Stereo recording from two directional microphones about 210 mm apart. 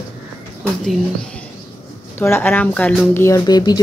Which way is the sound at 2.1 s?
10° left (ahead or behind).